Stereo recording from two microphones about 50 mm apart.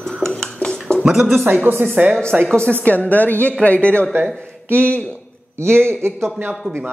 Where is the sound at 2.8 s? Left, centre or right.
Left.